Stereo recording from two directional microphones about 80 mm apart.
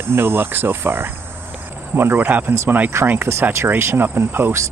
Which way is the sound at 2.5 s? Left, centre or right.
Right.